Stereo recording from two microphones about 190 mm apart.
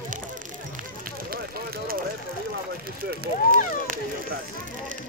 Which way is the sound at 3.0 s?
50° right (ahead or behind).